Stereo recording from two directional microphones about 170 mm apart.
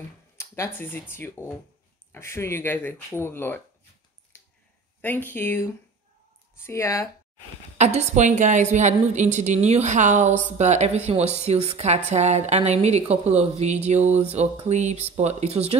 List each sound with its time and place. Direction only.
0.4 s speech: 15° left (ahead or behind)
4.3 s finger snapping: 15° left (ahead or behind)
5.0 s speech: 10° left (ahead or behind)
7.7 s a woman's voice: 40° right (ahead or behind)